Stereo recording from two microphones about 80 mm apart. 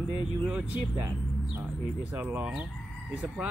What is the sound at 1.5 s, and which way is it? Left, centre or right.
Speech, right.